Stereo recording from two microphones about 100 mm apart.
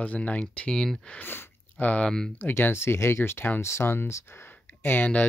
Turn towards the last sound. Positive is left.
turn(degrees=15)  # may be behind; listen again after turning